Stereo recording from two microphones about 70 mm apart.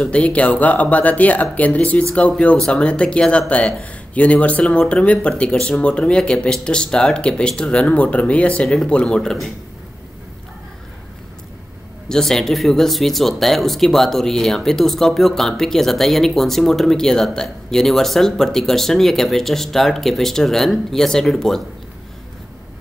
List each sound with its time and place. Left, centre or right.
0.0 s speech: centre
12.1 s speech: centre